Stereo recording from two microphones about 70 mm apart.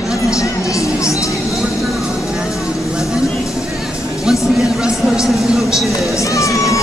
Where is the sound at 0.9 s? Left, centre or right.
Left.